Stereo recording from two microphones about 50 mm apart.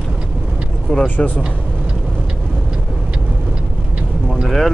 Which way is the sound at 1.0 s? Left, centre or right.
Left.